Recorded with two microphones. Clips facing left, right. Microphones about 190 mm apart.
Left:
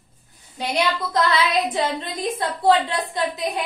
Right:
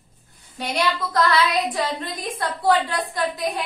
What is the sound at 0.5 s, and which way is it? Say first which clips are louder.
A woman's voice: left 1 dB; 20° left (ahead or behind).